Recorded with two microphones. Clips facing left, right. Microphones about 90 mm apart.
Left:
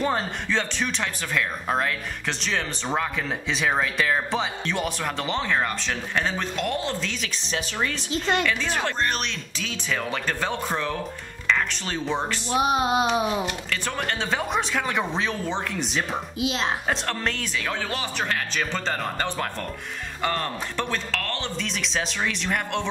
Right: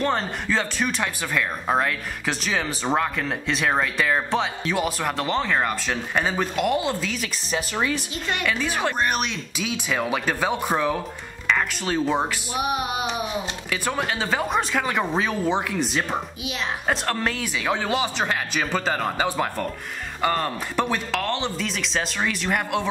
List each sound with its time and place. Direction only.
0.0 s speech: 5° left (ahead or behind)
12.5 s music: 25° left (ahead or behind)
13.7 s speech: 5° right (ahead or behind)
16.4 s a woman's voice: 30° left (ahead or behind)
16.8 s speech: centre (ahead or behind)
17.6 s speech: 15° right (ahead or behind)
21.5 s speech: centre (ahead or behind)